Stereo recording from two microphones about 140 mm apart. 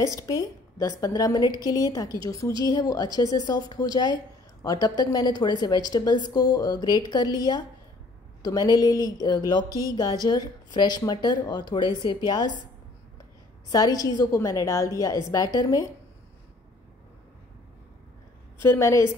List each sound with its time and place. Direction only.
0.0 s a woman's voice: 25° left (ahead or behind)
8.4 s a woman's voice: 25° left (ahead or behind)
9.5 s a sound: 30° left (ahead or behind)
9.8 s a woman's voice: 30° left (ahead or behind)
13.7 s a woman's voice: 25° left (ahead or behind)
18.6 s a woman's voice: 20° left (ahead or behind)